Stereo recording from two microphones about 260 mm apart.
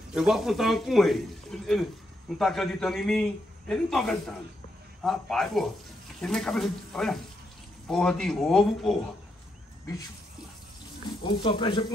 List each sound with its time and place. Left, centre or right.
0.1 s a man's voice: centre
11.2 s speech: centre